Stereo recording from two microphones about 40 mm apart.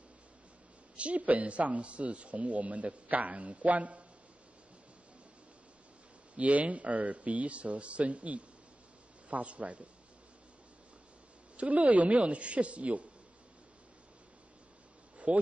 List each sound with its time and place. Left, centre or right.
0.9 s a man's voice: right
6.3 s a man's voice: right
11.5 s a man's voice: right
15.3 s a man's voice: right